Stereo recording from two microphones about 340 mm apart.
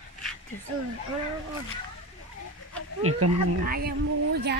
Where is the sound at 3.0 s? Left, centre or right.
Right.